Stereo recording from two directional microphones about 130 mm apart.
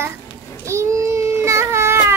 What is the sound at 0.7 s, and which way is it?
Baby cry, 20° right (ahead or behind).